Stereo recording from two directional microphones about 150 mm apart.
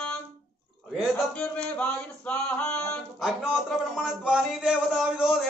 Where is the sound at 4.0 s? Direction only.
5° right (ahead or behind).